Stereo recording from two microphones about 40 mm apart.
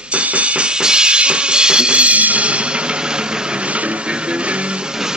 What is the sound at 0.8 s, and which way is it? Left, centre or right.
Drum kit, right.